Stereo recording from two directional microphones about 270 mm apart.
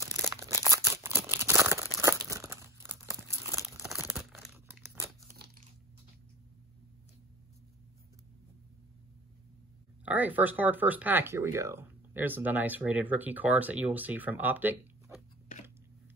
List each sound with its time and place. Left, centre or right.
0.0 s a sound: centre
4.1 s crumpling: centre
5.3 s crunch: right
10.0 s speech: centre